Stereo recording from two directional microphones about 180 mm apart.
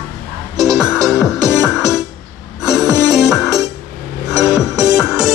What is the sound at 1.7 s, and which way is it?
Music, centre (ahead or behind).